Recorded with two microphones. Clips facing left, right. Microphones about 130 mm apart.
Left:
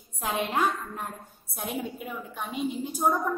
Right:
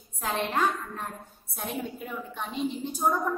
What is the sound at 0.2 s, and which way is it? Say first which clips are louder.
A woman's voice: even; 15° left (ahead or behind).